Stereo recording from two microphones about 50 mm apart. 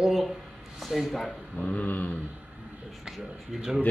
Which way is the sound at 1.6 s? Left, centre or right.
Left.